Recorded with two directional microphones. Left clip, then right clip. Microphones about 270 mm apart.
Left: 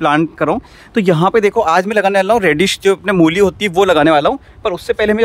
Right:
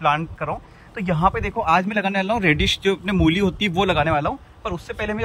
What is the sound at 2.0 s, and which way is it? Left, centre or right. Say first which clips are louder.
A man's voice: left 9 dB; centre.